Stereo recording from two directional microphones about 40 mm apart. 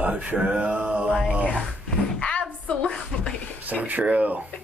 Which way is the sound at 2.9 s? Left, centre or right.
Left.